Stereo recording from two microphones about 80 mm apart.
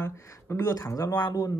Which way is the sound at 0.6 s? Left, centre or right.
Left.